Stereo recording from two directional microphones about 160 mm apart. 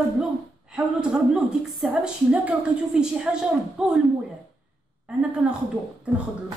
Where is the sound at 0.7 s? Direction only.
5° right (ahead or behind).